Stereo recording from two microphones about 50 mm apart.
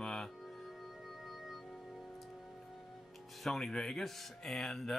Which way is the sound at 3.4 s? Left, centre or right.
Centre.